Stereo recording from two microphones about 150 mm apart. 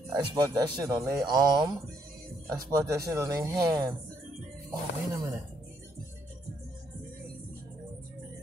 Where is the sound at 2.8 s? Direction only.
20° right (ahead or behind).